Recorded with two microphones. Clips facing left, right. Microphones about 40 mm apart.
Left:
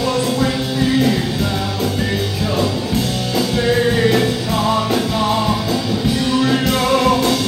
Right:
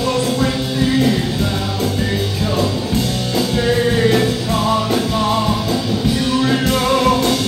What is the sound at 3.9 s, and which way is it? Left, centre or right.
Music, centre.